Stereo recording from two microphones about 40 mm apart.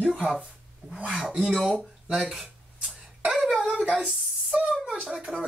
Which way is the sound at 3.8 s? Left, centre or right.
Right.